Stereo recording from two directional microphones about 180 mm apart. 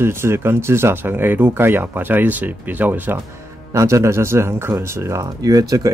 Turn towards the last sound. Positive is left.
turn(degrees=-20)  # may be behind; listen again after turning